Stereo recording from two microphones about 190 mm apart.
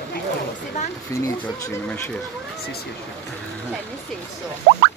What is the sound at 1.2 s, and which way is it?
Speech, 15° left (ahead or behind).